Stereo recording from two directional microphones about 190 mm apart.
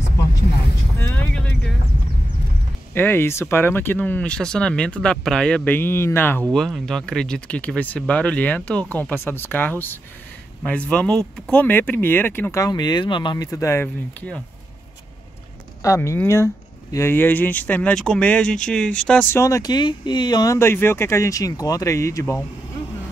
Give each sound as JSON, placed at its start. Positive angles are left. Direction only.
{"t": 0.9, "sound": "vehicle", "side_deg": 10}
{"t": 2.9, "sound": "speech", "side_deg": 10}
{"t": 15.8, "sound": "speech", "side_deg": 15}